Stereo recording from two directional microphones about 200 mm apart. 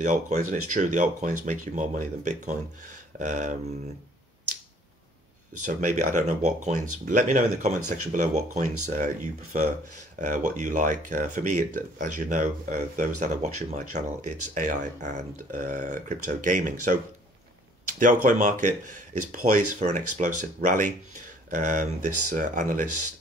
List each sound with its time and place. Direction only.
0.0 s speech: 40° right (ahead or behind)
5.7 s speech: 40° right (ahead or behind)